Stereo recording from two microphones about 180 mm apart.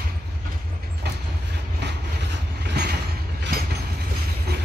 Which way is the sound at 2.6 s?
65° right (ahead or behind).